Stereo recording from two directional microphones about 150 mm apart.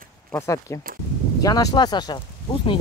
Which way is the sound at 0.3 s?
20° left (ahead or behind).